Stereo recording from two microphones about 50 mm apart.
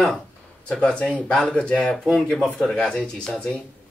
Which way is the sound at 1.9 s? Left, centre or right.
Centre.